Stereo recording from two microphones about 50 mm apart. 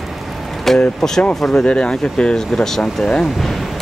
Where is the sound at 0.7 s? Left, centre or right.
Centre.